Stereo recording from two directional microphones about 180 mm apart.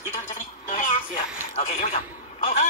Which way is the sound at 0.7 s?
40° left (ahead or behind).